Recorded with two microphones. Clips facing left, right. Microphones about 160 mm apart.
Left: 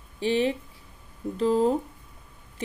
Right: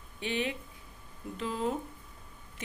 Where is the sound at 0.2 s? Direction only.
30° left (ahead or behind).